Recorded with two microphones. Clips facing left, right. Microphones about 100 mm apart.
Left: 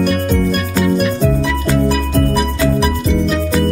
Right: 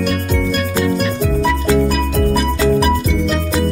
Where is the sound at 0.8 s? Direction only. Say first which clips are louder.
Left 2 dB; 5° left (ahead or behind).